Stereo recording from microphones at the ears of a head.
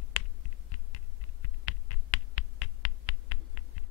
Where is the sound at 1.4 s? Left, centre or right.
Left.